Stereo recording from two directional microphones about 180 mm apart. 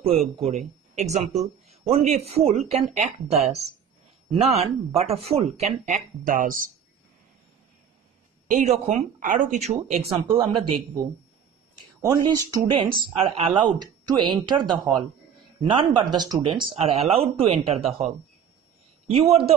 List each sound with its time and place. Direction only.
0.0 s speech: 35° right (ahead or behind)
1.7 s a sound: 35° right (ahead or behind)
2.2 s speech: 35° right (ahead or behind); by 6.7 s 50° right (ahead or behind)
8.5 s speech: 35° right (ahead or behind)
12.0 s speech: 20° right (ahead or behind)
19.0 s speech: 35° right (ahead or behind)